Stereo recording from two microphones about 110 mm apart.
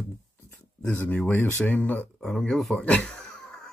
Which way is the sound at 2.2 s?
5° left (ahead or behind).